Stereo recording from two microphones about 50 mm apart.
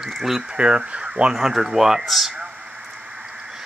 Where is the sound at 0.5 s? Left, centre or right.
Centre.